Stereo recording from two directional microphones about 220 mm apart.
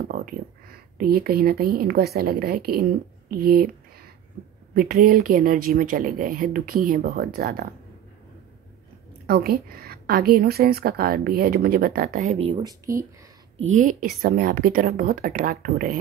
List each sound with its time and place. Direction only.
0.0 s speech: 40° right (ahead or behind)
4.7 s speech: 40° right (ahead or behind)
9.2 s a woman's voice: 45° right (ahead or behind); by 13.0 s 15° right (ahead or behind)
13.7 s speech: 35° right (ahead or behind)